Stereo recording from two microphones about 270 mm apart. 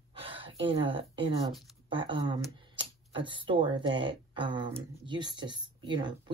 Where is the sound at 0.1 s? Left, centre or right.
Centre.